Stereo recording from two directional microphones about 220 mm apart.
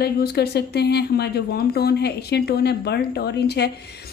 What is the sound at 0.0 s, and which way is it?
A woman's voice, 45° left (ahead or behind).